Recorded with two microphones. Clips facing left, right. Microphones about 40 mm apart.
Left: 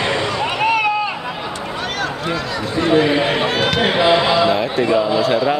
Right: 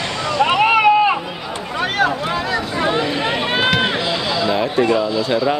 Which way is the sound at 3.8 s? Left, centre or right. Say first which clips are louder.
Left 5 dB; left.